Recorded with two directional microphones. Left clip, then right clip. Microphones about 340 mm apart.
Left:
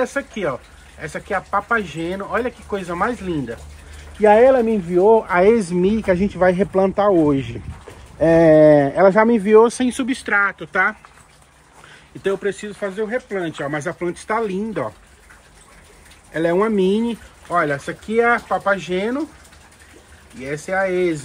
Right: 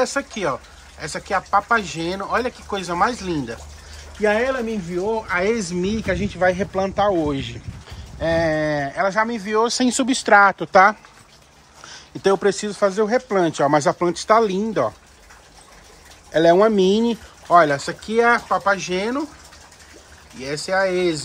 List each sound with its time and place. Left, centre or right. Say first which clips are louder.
0.0 s speech: even; centre
9.8 s speech: right 2 dB; centre
12.4 s speech: right 4 dB; centre
12.7 s speech: right 5 dB; right
13.4 s speech: right 7 dB; centre
16.3 s speech: right 4 dB; centre
20.3 s speech: right 1 dB; centre